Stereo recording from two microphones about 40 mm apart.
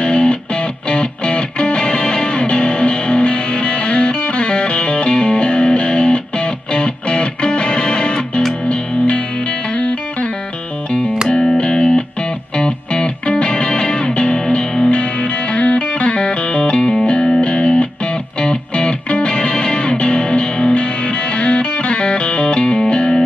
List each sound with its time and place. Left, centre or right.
0.0 s music: left
11.2 s music: centre